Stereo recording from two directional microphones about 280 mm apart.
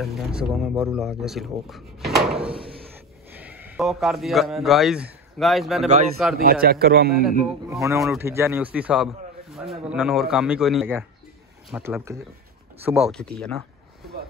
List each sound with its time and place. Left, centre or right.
0.0 s a man's voice: centre
6.3 s a man's voice: right
7.7 s speech: centre